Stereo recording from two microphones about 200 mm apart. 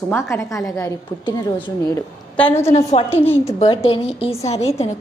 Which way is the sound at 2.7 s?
30° left (ahead or behind).